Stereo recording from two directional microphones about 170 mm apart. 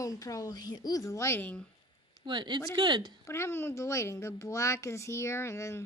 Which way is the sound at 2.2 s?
25° right (ahead or behind).